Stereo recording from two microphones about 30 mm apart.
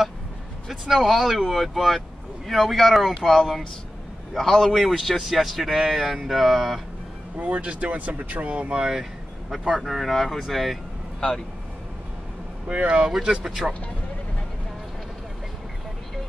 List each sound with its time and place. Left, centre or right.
0.7 s a man's voice: centre
6.1 s a sound: centre
7.4 s speech: right
8.7 s speech: right
9.8 s speech: centre
11.1 s speech: centre
12.6 s speech: right
13.2 s speech: right